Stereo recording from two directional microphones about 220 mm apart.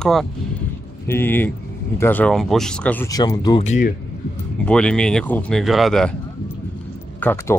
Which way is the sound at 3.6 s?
35° left (ahead or behind).